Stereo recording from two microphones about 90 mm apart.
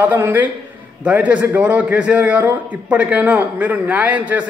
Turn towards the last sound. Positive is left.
turn(degrees=-15)  # may be behind; listen again after turning